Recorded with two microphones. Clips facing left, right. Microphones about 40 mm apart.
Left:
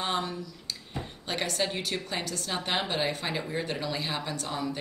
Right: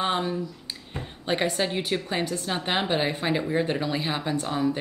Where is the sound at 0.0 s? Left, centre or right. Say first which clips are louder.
Right 5 dB; centre.